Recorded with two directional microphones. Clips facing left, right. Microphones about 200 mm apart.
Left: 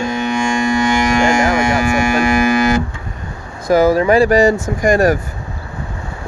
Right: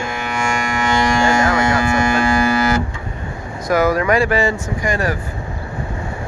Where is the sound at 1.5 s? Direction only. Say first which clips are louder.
Left 2 dB; 10° left (ahead or behind).